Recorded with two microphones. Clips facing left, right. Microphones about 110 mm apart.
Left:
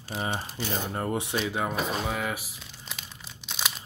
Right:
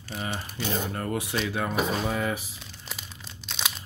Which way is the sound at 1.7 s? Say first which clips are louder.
Right 2 dB; centre (ahead or behind).